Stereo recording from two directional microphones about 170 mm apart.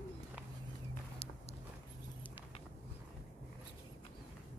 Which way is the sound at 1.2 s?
35° left (ahead or behind).